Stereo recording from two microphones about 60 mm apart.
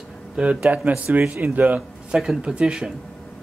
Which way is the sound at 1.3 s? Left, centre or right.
Right.